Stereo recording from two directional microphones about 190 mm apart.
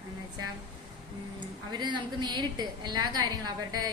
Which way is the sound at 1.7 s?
25° right (ahead or behind).